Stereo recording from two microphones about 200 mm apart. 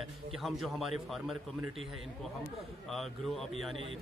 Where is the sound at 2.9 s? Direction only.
Centre (ahead or behind).